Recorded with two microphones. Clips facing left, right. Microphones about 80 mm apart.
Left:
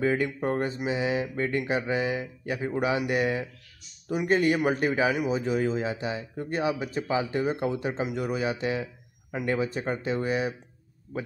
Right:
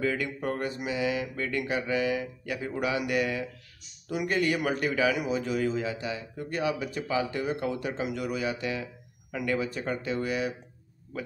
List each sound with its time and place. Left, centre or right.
0.0 s a man's voice: left